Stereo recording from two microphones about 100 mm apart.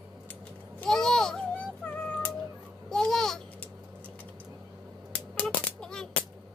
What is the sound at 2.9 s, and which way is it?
Babbling, 5° left (ahead or behind).